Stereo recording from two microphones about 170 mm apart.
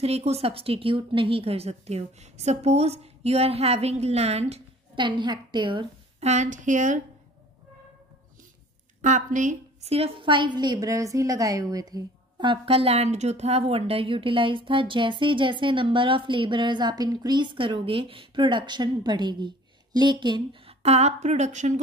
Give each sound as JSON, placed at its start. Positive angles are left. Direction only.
{"t": 0.0, "sound": "a woman's voice", "side_deg": -35}
{"t": 6.2, "sound": "speech", "side_deg": -45}
{"t": 9.0, "sound": "speech", "side_deg": -45}
{"t": 9.8, "sound": "a woman's voice", "side_deg": -35}